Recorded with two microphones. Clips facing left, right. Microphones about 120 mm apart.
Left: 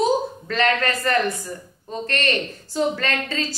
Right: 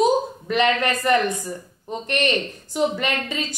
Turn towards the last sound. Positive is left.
turn(degrees=-15)  # may be behind; listen again after turning